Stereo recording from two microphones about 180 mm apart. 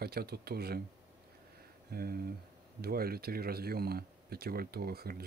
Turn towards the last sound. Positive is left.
turn(degrees=-60)  # may be behind; listen again after turning